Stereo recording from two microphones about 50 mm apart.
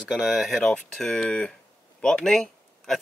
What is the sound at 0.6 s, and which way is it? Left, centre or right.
Speech, centre.